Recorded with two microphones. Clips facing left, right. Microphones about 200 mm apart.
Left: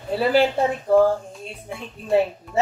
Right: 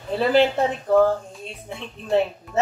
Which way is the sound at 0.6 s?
Centre (ahead or behind).